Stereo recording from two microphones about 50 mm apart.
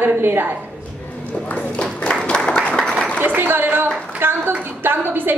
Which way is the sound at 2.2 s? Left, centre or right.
Centre.